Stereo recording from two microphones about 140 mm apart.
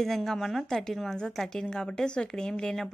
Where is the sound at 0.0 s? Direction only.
Centre (ahead or behind).